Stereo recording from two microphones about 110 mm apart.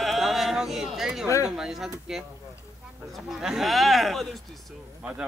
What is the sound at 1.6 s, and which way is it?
Speech, 5° right (ahead or behind).